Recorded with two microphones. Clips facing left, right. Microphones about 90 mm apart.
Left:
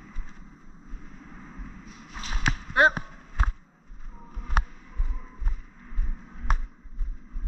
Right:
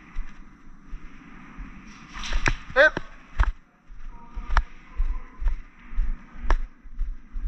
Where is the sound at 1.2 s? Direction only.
25° left (ahead or behind).